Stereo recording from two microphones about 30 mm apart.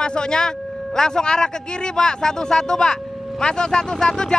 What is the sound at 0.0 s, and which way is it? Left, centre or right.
Speech, left.